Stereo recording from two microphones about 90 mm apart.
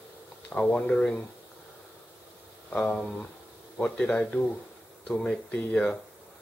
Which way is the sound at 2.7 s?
15° left (ahead or behind).